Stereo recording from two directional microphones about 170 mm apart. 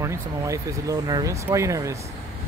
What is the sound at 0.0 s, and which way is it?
Speech, 20° right (ahead or behind).